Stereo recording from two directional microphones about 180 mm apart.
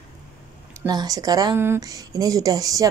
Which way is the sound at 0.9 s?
20° right (ahead or behind).